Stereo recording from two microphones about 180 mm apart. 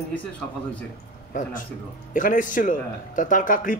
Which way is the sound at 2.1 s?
45° left (ahead or behind).